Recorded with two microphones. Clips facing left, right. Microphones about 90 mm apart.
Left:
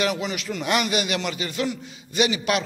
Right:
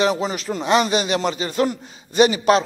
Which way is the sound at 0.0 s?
35° right (ahead or behind).